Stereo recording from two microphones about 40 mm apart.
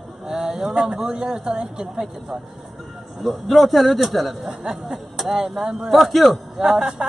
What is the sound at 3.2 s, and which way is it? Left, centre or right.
Speech, centre.